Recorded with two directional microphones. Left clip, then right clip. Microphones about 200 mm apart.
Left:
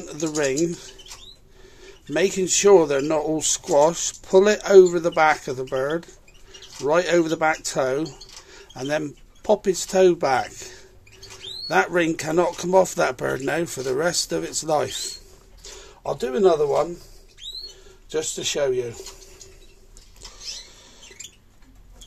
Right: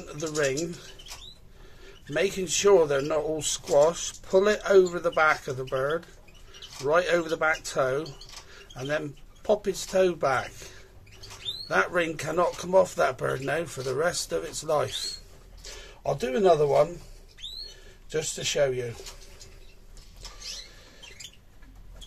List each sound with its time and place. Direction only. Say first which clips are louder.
0.0 s a man's voice: left 4 dB; 40° left (ahead or behind)
15.8 s speech: left 2 dB; 25° left (ahead or behind)
18.1 s speech: left 3 dB; 30° left (ahead or behind)